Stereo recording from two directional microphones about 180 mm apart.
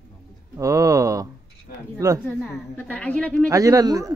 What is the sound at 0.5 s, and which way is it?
Speech, 20° right (ahead or behind).